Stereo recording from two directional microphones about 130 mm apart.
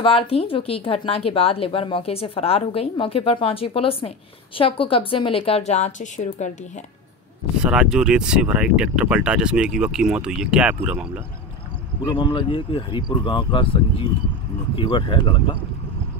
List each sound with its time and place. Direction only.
0.0 s speech: 45° left (ahead or behind); by 6.2 s 70° left (ahead or behind)
7.6 s speech: 5° right (ahead or behind)
12.2 s speech: 40° left (ahead or behind)